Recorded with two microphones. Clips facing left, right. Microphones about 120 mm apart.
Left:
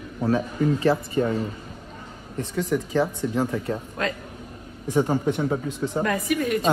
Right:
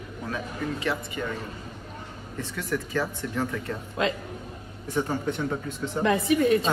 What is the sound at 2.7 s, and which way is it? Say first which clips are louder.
Speech: left 4 dB; 20° left (ahead or behind).